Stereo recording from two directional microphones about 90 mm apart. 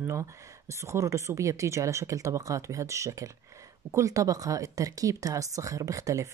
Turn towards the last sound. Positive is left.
turn(degrees=-35)  # may be behind; listen again after turning